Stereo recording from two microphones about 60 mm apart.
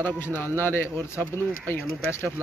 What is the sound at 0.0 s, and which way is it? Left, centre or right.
Speech, left.